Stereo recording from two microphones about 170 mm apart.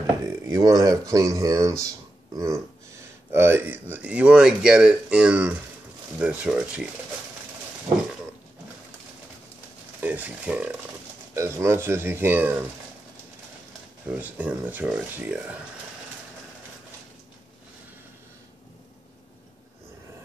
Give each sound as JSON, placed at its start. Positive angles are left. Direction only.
{"t": 0.5, "sound": "speech", "side_deg": -20}
{"t": 9.9, "sound": "speech", "side_deg": -10}
{"t": 14.0, "sound": "speech", "side_deg": -10}